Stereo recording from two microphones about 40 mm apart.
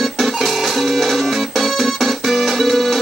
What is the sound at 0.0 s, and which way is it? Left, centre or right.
Music, centre.